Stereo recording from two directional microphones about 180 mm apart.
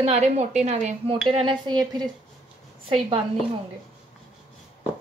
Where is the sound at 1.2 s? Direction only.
25° right (ahead or behind).